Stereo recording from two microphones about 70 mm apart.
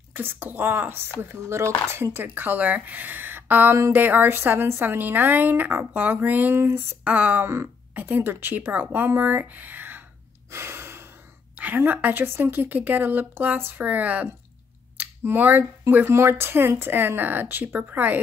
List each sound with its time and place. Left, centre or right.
0.1 s a woman's voice: right
1.2 s speech: right
2.1 s a woman's voice: right
7.2 s a woman's voice: right
10.5 s gasp: right
11.5 s a woman's voice: right
15.0 s a sound: right
16.1 s a woman's voice: right